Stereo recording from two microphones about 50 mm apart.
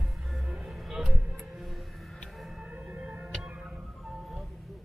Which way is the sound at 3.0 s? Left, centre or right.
Right.